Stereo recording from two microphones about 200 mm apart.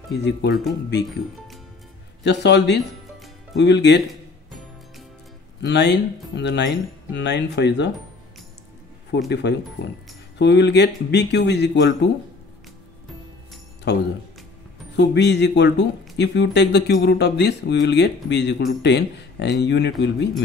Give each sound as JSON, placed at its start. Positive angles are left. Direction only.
{"t": 0.1, "sound": "speech", "side_deg": 55}
{"t": 2.2, "sound": "speech", "side_deg": 60}
{"t": 4.1, "sound": "music", "side_deg": 0}
{"t": 5.6, "sound": "speech", "side_deg": 60}
{"t": 9.3, "sound": "speech", "side_deg": 60}
{"t": 13.9, "sound": "speech", "side_deg": 60}